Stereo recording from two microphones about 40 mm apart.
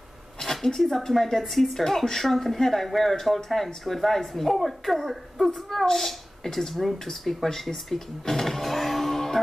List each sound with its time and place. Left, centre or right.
0.4 s speech: centre